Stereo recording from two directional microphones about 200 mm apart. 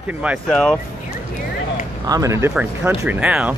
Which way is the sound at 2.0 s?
15° right (ahead or behind).